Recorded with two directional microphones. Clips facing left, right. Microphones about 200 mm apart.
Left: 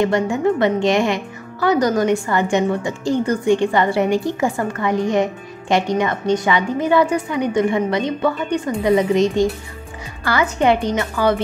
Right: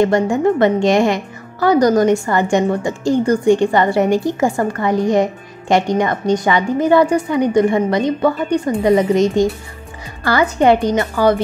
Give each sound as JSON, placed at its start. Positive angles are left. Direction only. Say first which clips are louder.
{"t": 0.0, "sound": "a woman's voice", "louder": "right 3 dB", "side_deg": -45}